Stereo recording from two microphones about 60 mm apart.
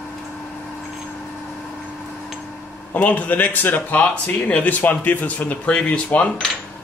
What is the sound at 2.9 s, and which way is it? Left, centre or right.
Speech, left.